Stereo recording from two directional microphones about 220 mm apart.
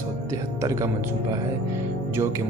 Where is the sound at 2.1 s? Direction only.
10° right (ahead or behind).